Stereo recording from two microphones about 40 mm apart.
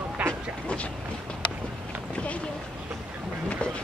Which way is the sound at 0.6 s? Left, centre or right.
Left.